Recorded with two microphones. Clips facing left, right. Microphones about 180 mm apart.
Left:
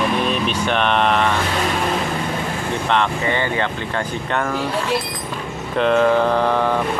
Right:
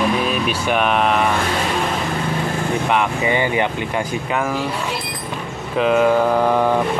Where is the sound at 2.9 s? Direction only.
10° right (ahead or behind).